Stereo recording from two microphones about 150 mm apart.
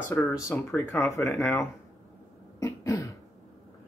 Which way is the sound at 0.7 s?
20° left (ahead or behind).